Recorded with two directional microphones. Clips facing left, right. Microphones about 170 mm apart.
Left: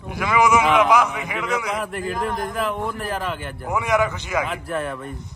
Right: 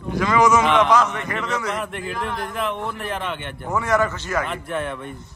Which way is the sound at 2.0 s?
45° left (ahead or behind).